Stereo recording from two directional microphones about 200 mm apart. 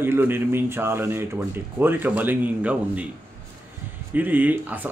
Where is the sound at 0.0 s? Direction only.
10° right (ahead or behind).